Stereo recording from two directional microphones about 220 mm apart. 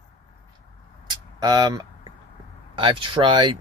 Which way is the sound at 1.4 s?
20° right (ahead or behind).